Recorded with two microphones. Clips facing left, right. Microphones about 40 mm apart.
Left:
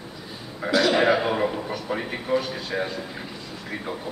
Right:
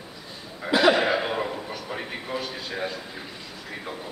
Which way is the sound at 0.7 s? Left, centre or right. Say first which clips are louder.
Right 2 dB; right.